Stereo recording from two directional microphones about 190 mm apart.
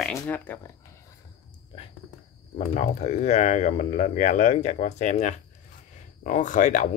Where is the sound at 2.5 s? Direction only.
35° left (ahead or behind).